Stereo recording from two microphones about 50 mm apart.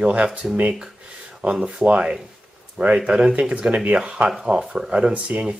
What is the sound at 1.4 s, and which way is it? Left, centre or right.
Speech, centre.